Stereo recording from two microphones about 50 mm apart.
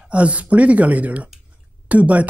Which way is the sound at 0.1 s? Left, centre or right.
Right.